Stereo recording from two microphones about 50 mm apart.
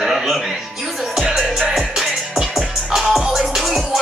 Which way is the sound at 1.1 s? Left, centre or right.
Centre.